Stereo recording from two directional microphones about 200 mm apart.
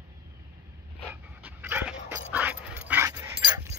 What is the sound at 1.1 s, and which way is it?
Dog, 10° right (ahead or behind).